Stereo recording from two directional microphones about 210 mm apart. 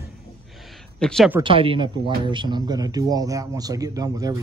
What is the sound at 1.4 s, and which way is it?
A man's voice, 25° right (ahead or behind).